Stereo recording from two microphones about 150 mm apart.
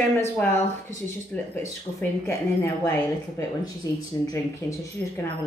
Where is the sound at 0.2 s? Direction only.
15° left (ahead or behind).